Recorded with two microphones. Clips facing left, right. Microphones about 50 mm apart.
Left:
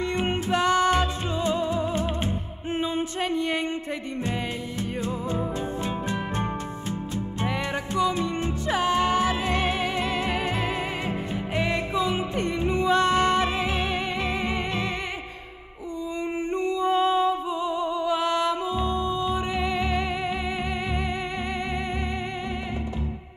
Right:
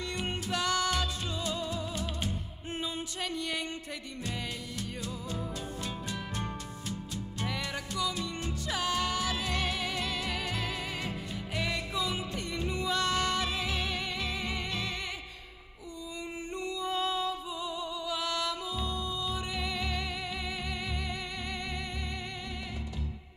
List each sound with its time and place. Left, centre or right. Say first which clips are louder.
0.0 s music: left 9 dB; left
5.0 s music: left 10 dB; left
7.4 s music: left 7 dB; left
16.5 s music: left 10 dB; left